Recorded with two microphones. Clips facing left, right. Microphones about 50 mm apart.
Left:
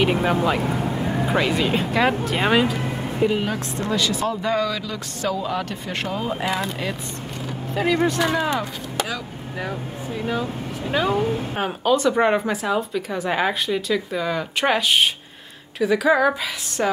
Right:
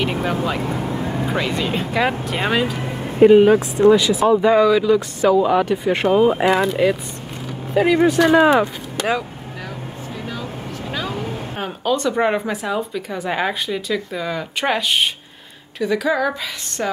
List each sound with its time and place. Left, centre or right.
0.0 s speech: centre
3.3 s a woman's voice: right
3.8 s a woman's voice: centre
6.4 s a woman's voice: centre
10.9 s speech: centre